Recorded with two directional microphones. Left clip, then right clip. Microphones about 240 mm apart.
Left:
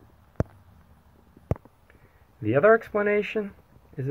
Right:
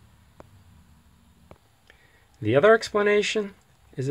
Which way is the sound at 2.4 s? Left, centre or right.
Right.